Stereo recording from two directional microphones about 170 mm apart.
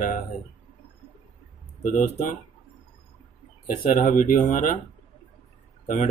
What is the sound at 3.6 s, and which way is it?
Speech, 50° left (ahead or behind).